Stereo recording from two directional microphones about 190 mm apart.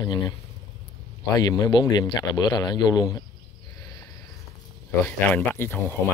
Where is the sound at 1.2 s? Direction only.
20° left (ahead or behind).